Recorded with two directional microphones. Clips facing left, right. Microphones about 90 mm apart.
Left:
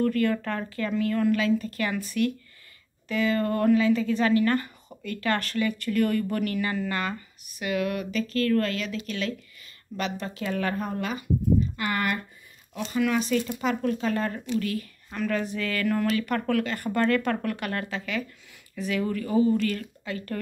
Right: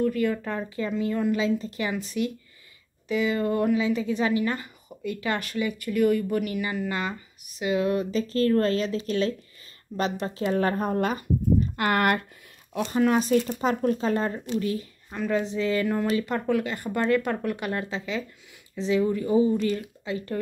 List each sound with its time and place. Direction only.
0.0 s a woman's voice: 10° right (ahead or behind); by 11.2 s 45° right (ahead or behind)
11.7 s speech: 55° right (ahead or behind)
12.9 s a woman's voice: 40° right (ahead or behind); by 20.3 s 20° right (ahead or behind)